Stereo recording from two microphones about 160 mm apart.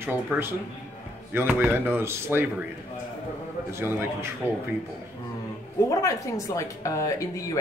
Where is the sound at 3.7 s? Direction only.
15° right (ahead or behind).